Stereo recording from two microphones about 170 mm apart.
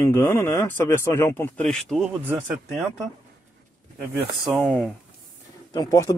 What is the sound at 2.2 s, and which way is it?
Speech, 10° right (ahead or behind).